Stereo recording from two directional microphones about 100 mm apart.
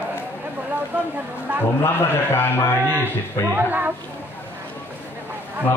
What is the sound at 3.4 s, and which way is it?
Speech, 20° right (ahead or behind).